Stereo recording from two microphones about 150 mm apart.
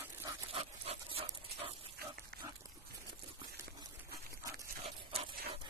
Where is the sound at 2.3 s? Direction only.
90° right.